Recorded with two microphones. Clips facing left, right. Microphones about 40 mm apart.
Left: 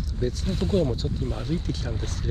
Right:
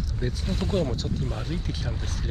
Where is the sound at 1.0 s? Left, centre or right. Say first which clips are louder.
Even; right.